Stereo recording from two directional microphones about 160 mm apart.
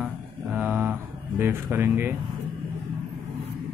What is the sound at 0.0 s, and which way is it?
Mantra, 10° right (ahead or behind).